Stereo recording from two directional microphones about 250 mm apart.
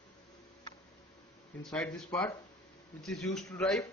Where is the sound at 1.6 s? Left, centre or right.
Centre.